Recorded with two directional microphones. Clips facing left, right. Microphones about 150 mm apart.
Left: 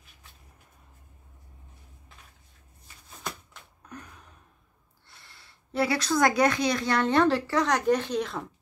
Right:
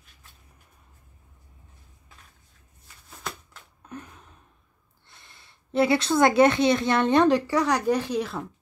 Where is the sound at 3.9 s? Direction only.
25° right (ahead or behind).